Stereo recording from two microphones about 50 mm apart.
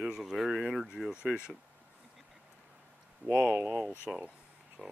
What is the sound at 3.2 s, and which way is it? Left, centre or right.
Speech, right.